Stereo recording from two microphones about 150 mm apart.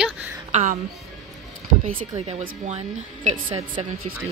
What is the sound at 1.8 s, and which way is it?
Speech, 40° right (ahead or behind).